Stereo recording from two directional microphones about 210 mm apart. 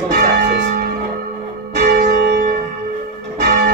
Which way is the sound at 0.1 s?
45° right (ahead or behind).